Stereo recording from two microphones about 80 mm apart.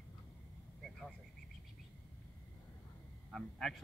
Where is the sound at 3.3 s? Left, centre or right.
Centre.